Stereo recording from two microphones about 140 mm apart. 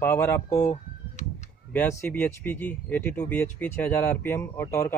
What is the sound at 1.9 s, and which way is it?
Speech, 15° left (ahead or behind).